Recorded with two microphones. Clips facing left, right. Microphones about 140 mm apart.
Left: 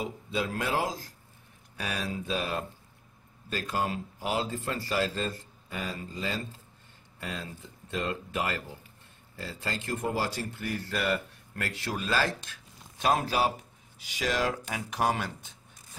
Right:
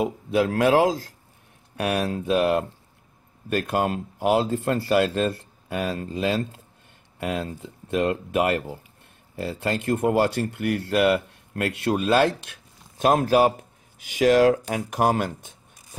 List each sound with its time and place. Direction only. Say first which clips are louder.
0.0 s speech: right 10 dB; 65° right (ahead or behind)
1.8 s speech: right 10 dB; 65° right (ahead or behind)
12.9 s speech: right 8 dB; 50° right (ahead or behind)